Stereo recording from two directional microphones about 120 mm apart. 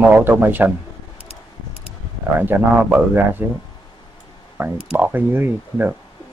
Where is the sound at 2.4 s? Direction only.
15° right (ahead or behind).